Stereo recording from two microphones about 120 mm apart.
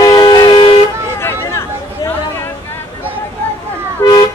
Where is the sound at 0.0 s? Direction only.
35° left (ahead or behind).